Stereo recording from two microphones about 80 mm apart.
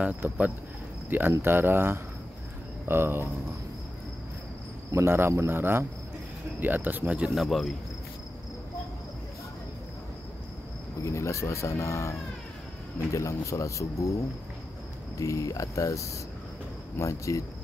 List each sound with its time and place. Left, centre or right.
0.2 s speech: right
1.4 s speech: right
4.9 s cricket: right
6.6 s speech: right
7.2 s speech: centre
11.0 s speech: left
15.1 s speech: left